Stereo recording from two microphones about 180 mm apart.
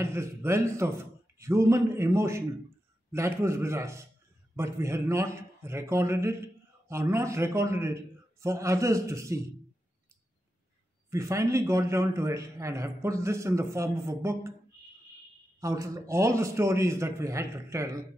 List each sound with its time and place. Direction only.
0.0 s a man's voice: 15° right (ahead or behind)
11.1 s a man's voice: 15° right (ahead or behind)
15.6 s a man's voice: 20° right (ahead or behind)